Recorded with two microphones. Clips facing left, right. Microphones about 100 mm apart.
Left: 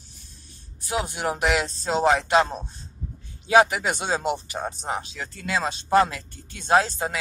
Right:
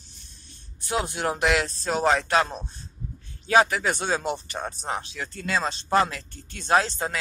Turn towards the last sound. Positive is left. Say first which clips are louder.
# left 2 dB
turn(degrees=10)  # may be behind; listen again after turning